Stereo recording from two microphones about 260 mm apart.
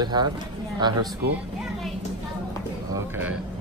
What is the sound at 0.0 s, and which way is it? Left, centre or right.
Speech, centre.